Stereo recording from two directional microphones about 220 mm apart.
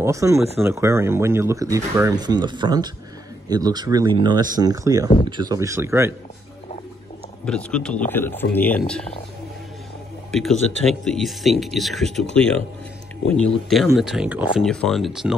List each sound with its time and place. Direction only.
0.0 s speech: 15° right (ahead or behind)
7.4 s speech: 5° left (ahead or behind)
10.3 s speech: centre (ahead or behind)